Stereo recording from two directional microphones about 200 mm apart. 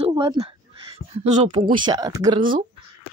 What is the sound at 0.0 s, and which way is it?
Speech, 25° right (ahead or behind).